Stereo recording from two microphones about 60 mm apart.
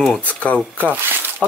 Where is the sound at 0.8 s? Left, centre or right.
Right.